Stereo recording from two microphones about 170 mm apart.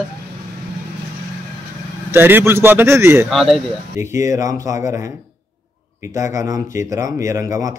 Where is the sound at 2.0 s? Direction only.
10° right (ahead or behind).